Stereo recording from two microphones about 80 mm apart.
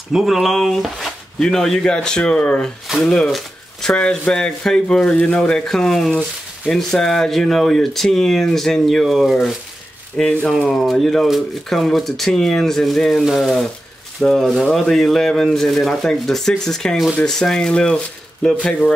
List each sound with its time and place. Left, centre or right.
0.1 s speech: centre